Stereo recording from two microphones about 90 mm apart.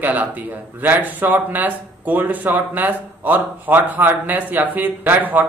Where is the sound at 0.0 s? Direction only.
20° right (ahead or behind).